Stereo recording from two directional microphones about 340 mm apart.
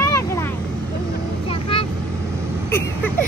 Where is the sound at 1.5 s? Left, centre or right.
Centre.